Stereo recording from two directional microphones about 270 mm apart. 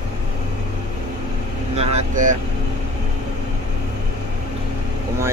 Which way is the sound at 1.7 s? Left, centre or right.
Right.